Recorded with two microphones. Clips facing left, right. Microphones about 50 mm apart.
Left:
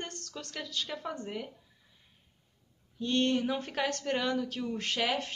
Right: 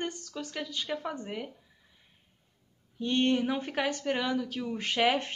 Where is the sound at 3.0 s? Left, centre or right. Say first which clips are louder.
Right 2 dB; centre.